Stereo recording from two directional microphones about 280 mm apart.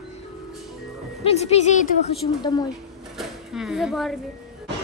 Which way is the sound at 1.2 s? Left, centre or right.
Left.